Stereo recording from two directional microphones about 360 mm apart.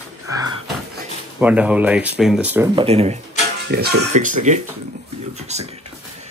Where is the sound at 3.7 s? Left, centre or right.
Right.